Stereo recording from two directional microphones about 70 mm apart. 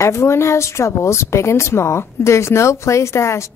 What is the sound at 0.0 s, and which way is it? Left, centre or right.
Speech, left.